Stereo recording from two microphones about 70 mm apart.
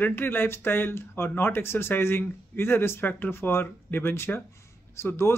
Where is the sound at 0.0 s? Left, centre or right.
Left.